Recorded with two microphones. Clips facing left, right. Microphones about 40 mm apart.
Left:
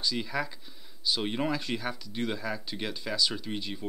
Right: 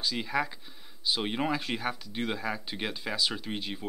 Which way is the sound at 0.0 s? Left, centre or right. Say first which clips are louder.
Right 1 dB; centre.